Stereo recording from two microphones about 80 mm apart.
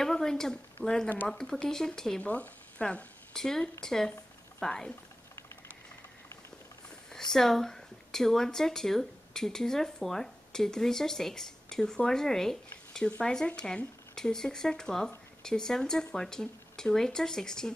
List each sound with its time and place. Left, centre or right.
0.0 s a sound: centre
0.8 s speech: centre
2.2 s speech: centre
7.1 s a woman's voice: centre